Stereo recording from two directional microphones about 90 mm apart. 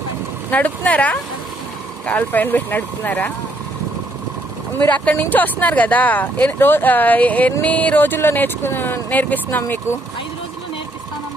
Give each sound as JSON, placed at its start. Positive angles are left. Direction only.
{"t": 0.5, "sound": "speech", "side_deg": 15}
{"t": 4.7, "sound": "speech", "side_deg": 15}